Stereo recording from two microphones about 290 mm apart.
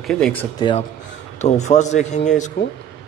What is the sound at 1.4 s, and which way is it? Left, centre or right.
Speech, left.